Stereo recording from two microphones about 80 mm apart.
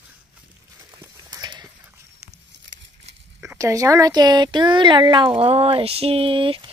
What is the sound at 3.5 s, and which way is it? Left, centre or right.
Speech, right.